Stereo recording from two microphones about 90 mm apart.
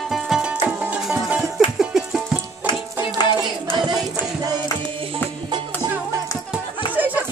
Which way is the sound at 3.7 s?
55° right (ahead or behind).